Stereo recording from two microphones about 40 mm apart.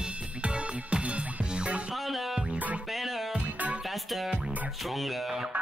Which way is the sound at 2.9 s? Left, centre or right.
Centre.